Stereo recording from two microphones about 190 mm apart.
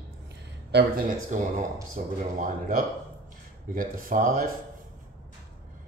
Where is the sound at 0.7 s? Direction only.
60° right (ahead or behind).